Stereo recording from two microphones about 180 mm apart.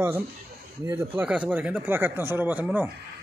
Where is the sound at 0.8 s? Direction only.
15° right (ahead or behind).